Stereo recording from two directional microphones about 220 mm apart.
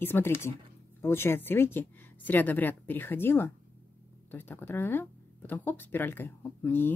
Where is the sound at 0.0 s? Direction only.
10° left (ahead or behind).